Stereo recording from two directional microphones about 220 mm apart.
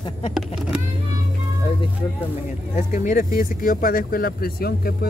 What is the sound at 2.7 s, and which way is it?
Speech, 35° left (ahead or behind).